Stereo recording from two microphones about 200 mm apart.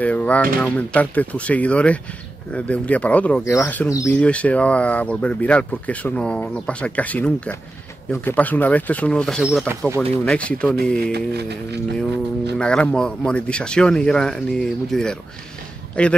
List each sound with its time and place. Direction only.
0.0 s a man's voice: 5° left (ahead or behind)
11.1 s a sound: 55° right (ahead or behind)
12.5 s a man's voice: 5° left (ahead or behind)